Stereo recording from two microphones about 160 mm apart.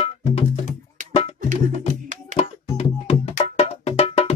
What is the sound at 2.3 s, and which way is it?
Music, 40° left (ahead or behind).